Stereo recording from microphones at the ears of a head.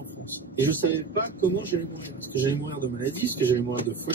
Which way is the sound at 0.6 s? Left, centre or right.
Right.